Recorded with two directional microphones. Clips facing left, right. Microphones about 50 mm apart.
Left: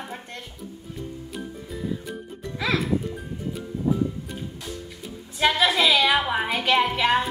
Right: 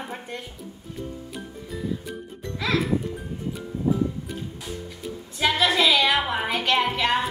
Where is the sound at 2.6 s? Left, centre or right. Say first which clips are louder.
Even; centre.